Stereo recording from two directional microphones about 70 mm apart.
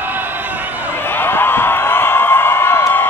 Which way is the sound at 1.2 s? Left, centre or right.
Left.